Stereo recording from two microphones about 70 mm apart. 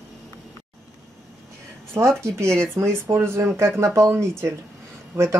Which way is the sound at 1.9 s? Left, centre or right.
Right.